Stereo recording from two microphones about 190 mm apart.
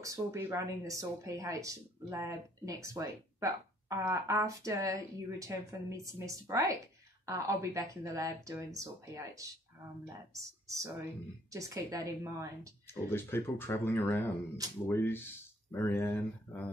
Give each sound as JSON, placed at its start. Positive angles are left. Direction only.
{"t": 0.0, "sound": "a woman's voice", "side_deg": -15}
{"t": 11.5, "sound": "a woman's voice", "side_deg": -15}
{"t": 13.1, "sound": "speech", "side_deg": 10}